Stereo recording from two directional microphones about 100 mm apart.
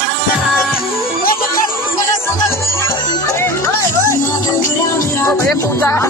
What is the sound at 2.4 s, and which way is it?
Music, 25° left (ahead or behind).